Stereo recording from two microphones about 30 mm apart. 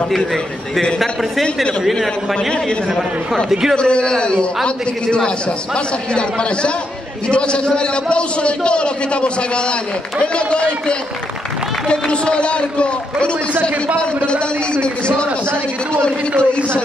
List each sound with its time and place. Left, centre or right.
3.7 s a man's voice: left
7.2 s a man's voice: left